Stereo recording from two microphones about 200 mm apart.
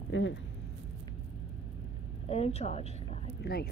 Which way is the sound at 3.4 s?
50° left (ahead or behind).